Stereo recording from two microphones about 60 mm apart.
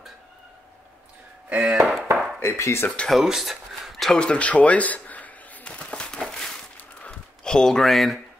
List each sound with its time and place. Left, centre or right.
1.5 s chop: right
2.1 s chopping: centre
2.4 s speech: left
3.1 s speech: centre
4.2 s a sound: centre
6.2 s a sound: centre